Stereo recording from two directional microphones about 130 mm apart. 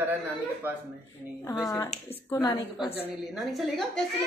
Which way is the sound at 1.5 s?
30° left (ahead or behind).